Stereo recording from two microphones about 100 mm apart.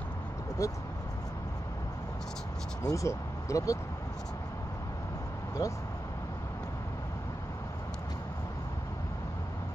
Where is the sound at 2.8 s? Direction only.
35° left (ahead or behind).